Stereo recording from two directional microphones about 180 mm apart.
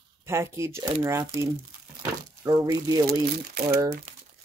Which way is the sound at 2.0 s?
20° right (ahead or behind).